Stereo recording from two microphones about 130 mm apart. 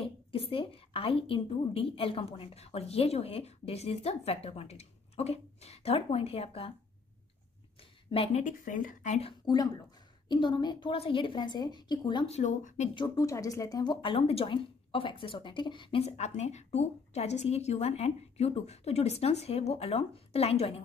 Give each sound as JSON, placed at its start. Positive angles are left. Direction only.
{"t": 0.0, "sound": "a woman's voice", "side_deg": 45}
{"t": 8.1, "sound": "speech", "side_deg": 50}
{"t": 9.5, "sound": "a woman's voice", "side_deg": 35}
{"t": 12.3, "sound": "a woman's voice", "side_deg": 65}
{"t": 12.9, "sound": "speech", "side_deg": 30}
{"t": 14.0, "sound": "a woman's voice", "side_deg": 45}
{"t": 16.0, "sound": "a woman's voice", "side_deg": 55}